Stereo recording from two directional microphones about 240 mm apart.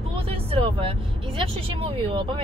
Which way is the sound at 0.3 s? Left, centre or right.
Right.